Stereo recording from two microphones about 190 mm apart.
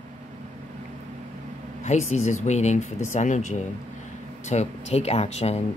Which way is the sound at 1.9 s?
35° left (ahead or behind).